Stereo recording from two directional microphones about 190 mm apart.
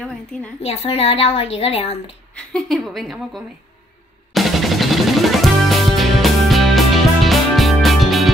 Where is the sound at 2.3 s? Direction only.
Centre (ahead or behind).